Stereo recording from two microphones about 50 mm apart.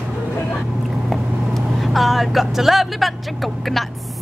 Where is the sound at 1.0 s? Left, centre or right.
Centre.